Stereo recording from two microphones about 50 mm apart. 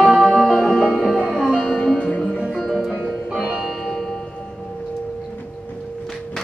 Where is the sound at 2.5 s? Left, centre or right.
Centre.